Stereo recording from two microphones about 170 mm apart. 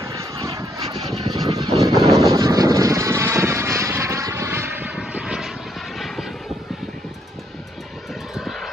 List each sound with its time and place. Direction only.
0.0 s vehicle: 20° right (ahead or behind)
1.9 s vehicle: centre (ahead or behind)
2.1 s vehicle: 20° right (ahead or behind); by 6.2 s centre (ahead or behind)
8.4 s vehicle: centre (ahead or behind)